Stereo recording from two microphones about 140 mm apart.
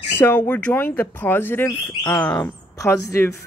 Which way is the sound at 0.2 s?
10° left (ahead or behind).